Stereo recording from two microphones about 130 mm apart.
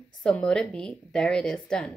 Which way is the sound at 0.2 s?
5° left (ahead or behind).